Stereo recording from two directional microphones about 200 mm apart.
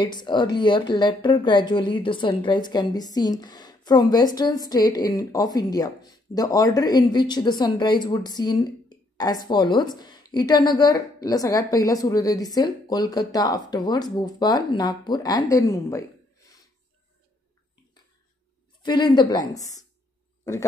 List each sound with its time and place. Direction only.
0.0 s a woman's voice: 20° left (ahead or behind)
18.8 s a woman's voice: 20° left (ahead or behind)